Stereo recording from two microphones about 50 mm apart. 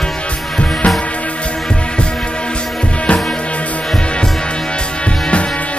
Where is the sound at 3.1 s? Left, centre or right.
Left.